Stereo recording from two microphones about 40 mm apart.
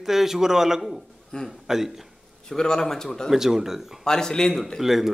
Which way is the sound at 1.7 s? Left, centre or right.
Centre.